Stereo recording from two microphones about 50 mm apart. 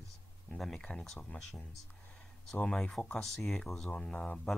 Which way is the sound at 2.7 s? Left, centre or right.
Centre.